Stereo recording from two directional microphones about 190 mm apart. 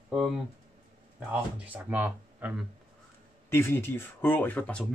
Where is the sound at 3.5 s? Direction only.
15° left (ahead or behind).